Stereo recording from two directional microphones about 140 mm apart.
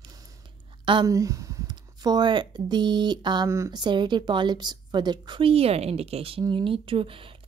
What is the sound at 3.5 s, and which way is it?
Speech, 20° right (ahead or behind).